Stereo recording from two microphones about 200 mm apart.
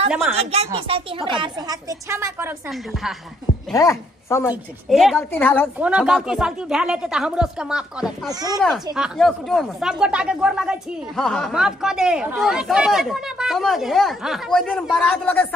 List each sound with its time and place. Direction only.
0.3 s a woman's voice: 30° right (ahead or behind); by 3.2 s centre (ahead or behind)
3.7 s speech: 15° left (ahead or behind)
4.5 s speech: centre (ahead or behind)
5.8 s speech: 5° right (ahead or behind)
8.3 s speech: 20° right (ahead or behind)
8.5 s speech: centre (ahead or behind)